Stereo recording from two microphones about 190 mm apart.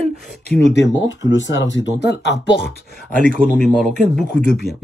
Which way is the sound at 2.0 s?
60° left (ahead or behind).